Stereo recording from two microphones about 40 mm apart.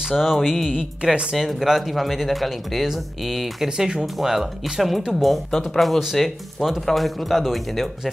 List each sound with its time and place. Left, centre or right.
0.2 s speech: centre
1.3 s speech: centre
3.6 s speech: centre
5.2 s speech: centre